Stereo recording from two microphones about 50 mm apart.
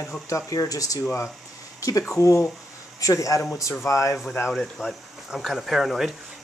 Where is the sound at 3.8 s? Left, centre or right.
Left.